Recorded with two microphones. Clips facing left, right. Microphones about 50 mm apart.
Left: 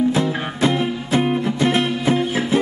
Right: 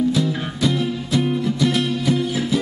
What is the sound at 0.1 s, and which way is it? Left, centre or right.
Music, left.